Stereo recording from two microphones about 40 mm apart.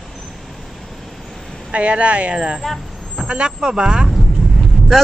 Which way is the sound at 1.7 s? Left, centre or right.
Right.